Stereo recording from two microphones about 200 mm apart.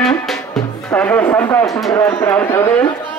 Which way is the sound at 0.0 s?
Centre (ahead or behind).